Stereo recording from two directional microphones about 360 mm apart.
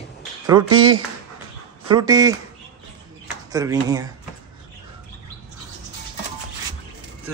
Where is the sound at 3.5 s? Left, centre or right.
Centre.